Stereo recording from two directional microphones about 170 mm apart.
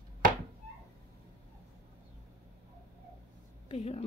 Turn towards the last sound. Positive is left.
turn(degrees=35)  # may be behind; listen again after turning